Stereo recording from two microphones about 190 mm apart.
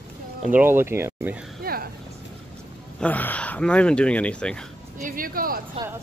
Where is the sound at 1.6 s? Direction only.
55° right (ahead or behind).